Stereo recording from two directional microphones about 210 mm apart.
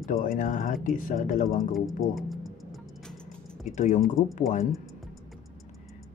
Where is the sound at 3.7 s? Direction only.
35° left (ahead or behind).